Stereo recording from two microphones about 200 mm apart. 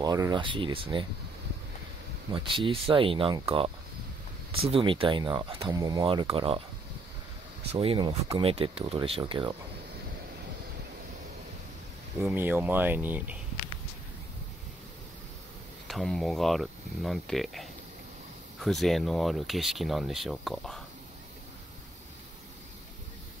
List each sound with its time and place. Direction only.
0.0 s speech: 20° right (ahead or behind)
2.3 s speech: 25° right (ahead or behind)
7.7 s speech: 30° right (ahead or behind)
12.2 s speech: 10° right (ahead or behind)
15.9 s speech: centre (ahead or behind)